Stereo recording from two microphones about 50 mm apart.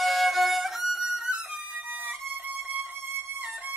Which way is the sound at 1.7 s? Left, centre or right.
Right.